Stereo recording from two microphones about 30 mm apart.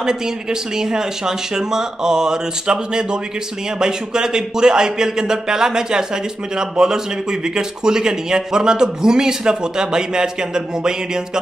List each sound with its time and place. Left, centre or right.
0.0 s speech: right